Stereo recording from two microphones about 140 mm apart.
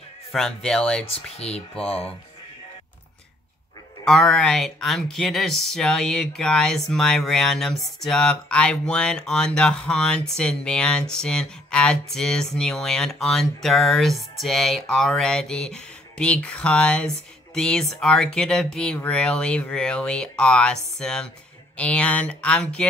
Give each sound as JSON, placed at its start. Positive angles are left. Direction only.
{"t": 0.3, "sound": "speech", "side_deg": 0}
{"t": 1.1, "sound": "speech", "side_deg": 45}
{"t": 4.0, "sound": "speech", "side_deg": 5}